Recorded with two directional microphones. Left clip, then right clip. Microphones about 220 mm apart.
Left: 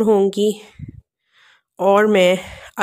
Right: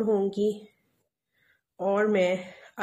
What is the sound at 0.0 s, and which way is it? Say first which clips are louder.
Speech: left 10 dB; 45° left (ahead or behind).